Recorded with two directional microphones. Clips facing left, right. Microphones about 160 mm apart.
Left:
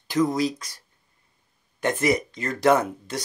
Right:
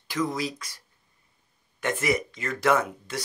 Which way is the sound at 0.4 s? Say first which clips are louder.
Left 7 dB; 40° left (ahead or behind).